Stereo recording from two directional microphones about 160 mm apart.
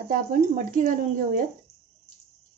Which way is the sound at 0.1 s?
60° right (ahead or behind).